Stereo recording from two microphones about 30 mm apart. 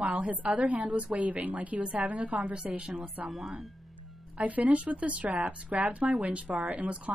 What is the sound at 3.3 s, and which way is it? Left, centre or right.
Speech, centre.